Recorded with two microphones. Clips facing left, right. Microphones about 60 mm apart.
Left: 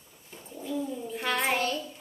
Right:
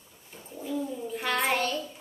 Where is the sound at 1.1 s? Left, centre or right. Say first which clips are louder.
Right 1 dB; centre.